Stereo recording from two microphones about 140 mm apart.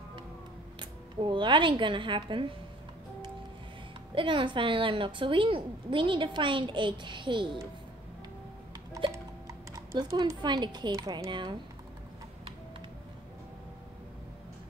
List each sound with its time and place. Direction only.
0.7 s a woman's voice: 35° right (ahead or behind)
4.1 s a woman's voice: 35° right (ahead or behind)
9.1 s a sound: 20° right (ahead or behind)
9.9 s a woman's voice: 30° right (ahead or behind)